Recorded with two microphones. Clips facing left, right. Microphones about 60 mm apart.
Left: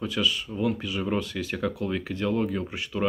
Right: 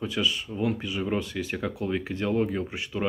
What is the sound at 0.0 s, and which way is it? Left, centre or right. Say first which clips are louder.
Speech: left 1 dB; right.